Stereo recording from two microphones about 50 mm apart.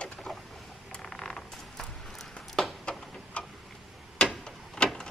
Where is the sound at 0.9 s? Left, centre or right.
Centre.